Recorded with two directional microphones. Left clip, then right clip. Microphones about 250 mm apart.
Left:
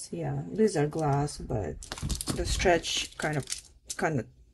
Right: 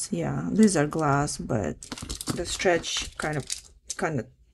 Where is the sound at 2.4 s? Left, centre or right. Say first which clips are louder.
Right 1 dB; centre.